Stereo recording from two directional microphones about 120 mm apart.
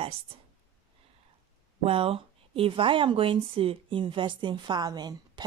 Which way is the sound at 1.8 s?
50° right (ahead or behind).